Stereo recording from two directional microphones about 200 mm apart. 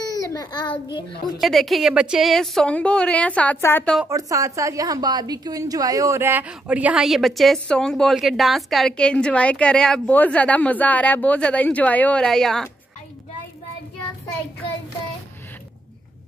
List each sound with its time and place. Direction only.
0.0 s a child's voice: 20° left (ahead or behind)
1.4 s a woman's voice: centre (ahead or behind)
4.0 s a woman's voice: 15° right (ahead or behind); by 12.6 s centre (ahead or behind)